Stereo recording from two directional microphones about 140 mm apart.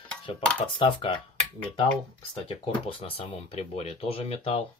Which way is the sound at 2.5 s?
40° left (ahead or behind).